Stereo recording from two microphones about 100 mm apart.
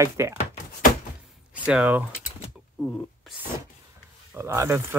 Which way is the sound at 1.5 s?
15° right (ahead or behind).